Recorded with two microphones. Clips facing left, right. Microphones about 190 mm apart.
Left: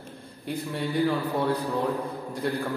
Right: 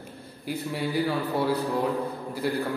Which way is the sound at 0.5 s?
5° right (ahead or behind).